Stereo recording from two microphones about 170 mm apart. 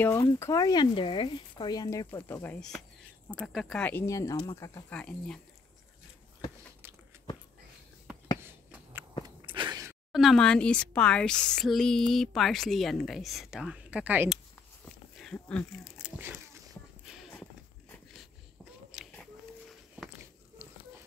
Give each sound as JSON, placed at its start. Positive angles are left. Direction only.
{"t": 0.0, "sound": "speech", "side_deg": 15}
{"t": 9.5, "sound": "gasp", "side_deg": -25}
{"t": 10.1, "sound": "speech", "side_deg": 0}
{"t": 15.1, "sound": "speech", "side_deg": 5}
{"t": 15.8, "sound": "a sound", "side_deg": -10}
{"t": 20.0, "sound": "a sound", "side_deg": -10}